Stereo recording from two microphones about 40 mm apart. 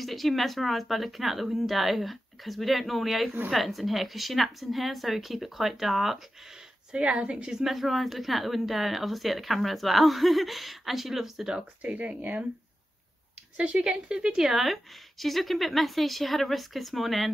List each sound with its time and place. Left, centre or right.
0.0 s speech: centre
6.9 s a woman's voice: right
7.5 s speech: centre
11.8 s speech: right
13.8 s speech: right; by 17.3 s centre